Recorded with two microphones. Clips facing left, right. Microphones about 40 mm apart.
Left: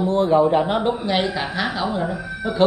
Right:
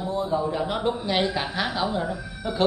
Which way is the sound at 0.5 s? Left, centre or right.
Left.